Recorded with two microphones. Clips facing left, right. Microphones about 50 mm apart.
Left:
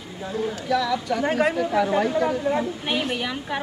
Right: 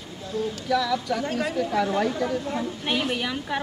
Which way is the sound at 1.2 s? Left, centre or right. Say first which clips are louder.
Left 6 dB; left.